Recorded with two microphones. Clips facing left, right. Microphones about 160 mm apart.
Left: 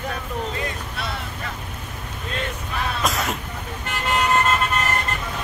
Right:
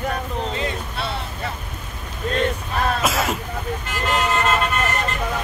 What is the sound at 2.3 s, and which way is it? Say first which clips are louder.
Speech: right 6 dB; 40° right (ahead or behind).